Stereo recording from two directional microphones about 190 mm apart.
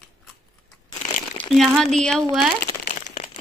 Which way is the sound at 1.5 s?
Centre (ahead or behind).